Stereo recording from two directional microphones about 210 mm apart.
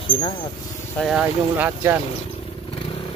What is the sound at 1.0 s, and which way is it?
Speech, 5° right (ahead or behind).